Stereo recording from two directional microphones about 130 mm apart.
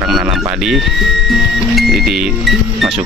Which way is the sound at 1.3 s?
Centre (ahead or behind).